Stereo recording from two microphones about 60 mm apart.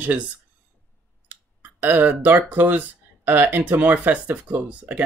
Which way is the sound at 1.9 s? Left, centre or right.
Right.